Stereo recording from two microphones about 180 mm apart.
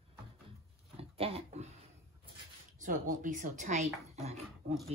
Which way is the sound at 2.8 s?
45° right (ahead or behind).